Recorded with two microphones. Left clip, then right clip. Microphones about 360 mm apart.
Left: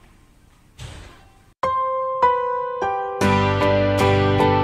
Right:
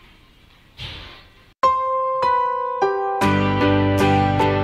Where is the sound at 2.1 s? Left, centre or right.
Centre.